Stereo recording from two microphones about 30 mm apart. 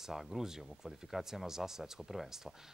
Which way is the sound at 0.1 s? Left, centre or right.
Centre.